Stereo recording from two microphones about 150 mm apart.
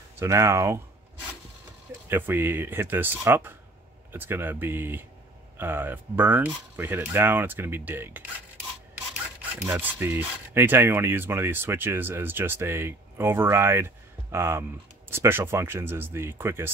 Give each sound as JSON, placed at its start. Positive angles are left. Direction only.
{"t": 0.2, "sound": "speech", "side_deg": -20}
{"t": 2.0, "sound": "speech", "side_deg": -15}
{"t": 9.7, "sound": "speech", "side_deg": -15}